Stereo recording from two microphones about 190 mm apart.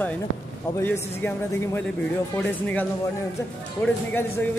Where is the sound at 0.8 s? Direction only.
10° left (ahead or behind).